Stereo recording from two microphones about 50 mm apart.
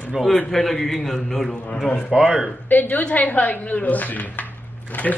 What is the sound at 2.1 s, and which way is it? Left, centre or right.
Speech, centre.